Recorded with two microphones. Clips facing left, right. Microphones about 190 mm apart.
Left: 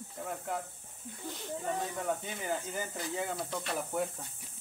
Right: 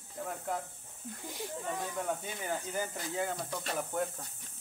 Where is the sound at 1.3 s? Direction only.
10° right (ahead or behind).